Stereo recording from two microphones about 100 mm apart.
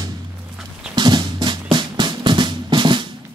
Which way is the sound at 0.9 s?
50° right (ahead or behind).